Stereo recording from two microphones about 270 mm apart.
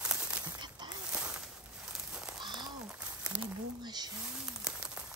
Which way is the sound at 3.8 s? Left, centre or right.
Centre.